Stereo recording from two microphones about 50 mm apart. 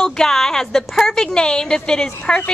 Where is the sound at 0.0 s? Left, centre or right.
Centre.